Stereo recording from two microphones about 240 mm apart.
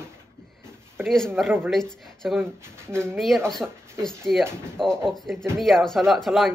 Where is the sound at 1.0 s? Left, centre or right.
Centre.